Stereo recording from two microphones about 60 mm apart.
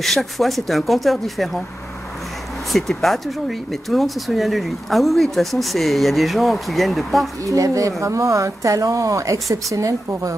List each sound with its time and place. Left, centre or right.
0.0 s speech: centre
2.7 s speech: centre
7.4 s speech: right